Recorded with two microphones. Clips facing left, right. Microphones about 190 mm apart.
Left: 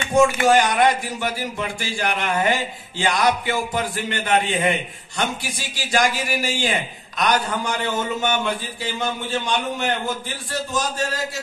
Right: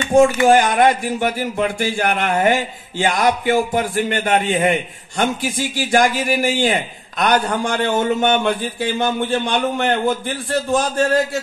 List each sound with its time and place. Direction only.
0.5 s a man's voice: 50° right (ahead or behind)
5.4 s speech: 15° right (ahead or behind)
5.9 s a man's voice: 50° right (ahead or behind)